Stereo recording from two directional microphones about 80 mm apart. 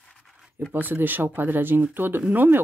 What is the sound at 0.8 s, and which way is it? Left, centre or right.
Speech, right.